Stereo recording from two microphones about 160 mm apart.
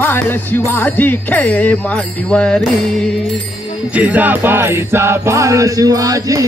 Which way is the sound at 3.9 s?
10° right (ahead or behind).